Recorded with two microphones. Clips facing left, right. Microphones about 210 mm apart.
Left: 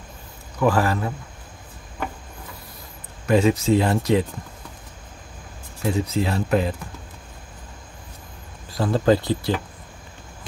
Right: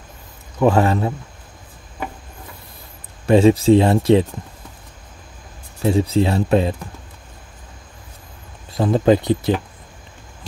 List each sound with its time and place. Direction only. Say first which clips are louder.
0.6 s speech: right 4 dB; 25° right (ahead or behind)
3.3 s speech: right 6 dB; 30° right (ahead or behind)
5.8 s speech: right 6 dB; 30° right (ahead or behind)
8.7 s speech: right 4 dB; 15° right (ahead or behind)